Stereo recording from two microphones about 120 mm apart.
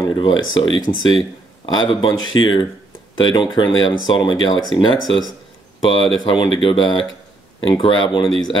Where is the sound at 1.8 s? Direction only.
45° left (ahead or behind).